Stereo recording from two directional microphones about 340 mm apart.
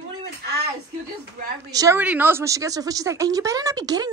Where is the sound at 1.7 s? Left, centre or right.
Centre.